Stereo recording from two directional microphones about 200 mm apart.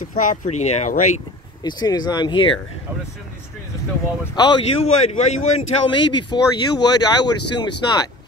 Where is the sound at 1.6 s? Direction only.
20° left (ahead or behind).